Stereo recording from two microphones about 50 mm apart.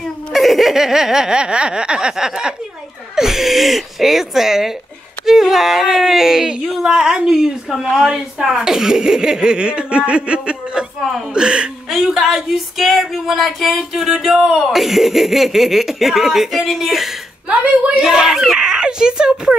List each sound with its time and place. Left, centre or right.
0.3 s speech: centre
6.6 s speech: centre
6.9 s speech: centre
11.9 s speech: centre
17.5 s speech: centre